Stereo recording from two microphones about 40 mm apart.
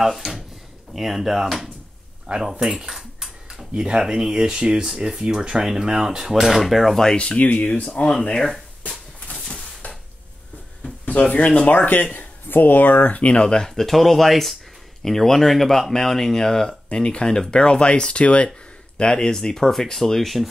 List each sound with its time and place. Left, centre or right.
0.0 s speech: centre
2.3 s speech: right
2.6 s speech: centre
3.0 s a sound: centre
4.1 s speech: centre
7.2 s speech: left
8.1 s speech: centre
8.8 s a sound: left
11.1 s speech: left
11.7 s speech: left
13.0 s speech: left
13.5 s speech: centre; by 18.5 s left
18.9 s speech: centre